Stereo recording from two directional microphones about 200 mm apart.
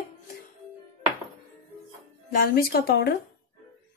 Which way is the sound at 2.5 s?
50° left (ahead or behind).